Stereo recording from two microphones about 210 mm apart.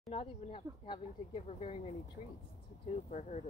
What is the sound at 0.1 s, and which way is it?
Speech, 25° left (ahead or behind).